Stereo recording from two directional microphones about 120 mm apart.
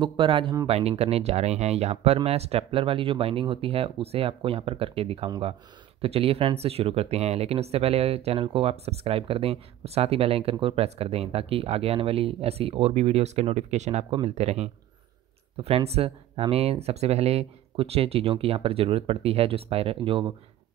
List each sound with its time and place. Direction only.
0.0 s speech: 45° right (ahead or behind)
0.7 s speech: 60° right (ahead or behind)
15.5 s speech: 55° right (ahead or behind)